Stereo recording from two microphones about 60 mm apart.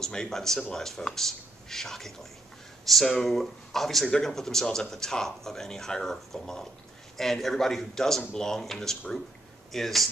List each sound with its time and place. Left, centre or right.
0.0 s a man's voice: centre